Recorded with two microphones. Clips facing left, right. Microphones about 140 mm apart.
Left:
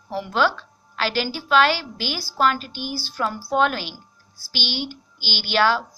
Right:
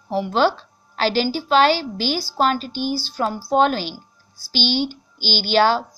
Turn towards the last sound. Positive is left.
turn(degrees=-30)  # may be behind; listen again after turning